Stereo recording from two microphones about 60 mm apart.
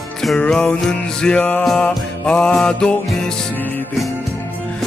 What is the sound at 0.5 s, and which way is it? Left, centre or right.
Music, centre.